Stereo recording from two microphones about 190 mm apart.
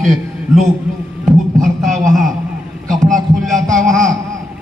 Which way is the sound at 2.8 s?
40° right (ahead or behind).